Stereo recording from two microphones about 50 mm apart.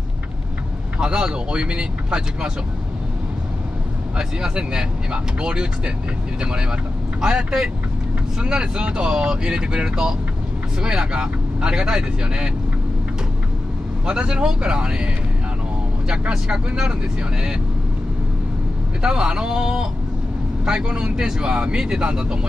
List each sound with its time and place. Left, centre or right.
0.9 s speech: centre
4.2 s speech: centre
7.2 s speech: centre
14.0 s speech: centre
16.1 s speech: centre
19.0 s speech: centre